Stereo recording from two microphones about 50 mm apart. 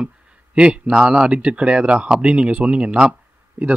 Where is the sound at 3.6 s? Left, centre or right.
Right.